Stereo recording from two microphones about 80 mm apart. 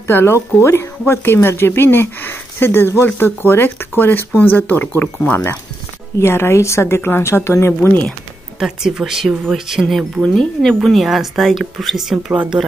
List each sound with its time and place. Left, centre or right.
0.0 s a woman's voice: left
8.5 s a woman's voice: centre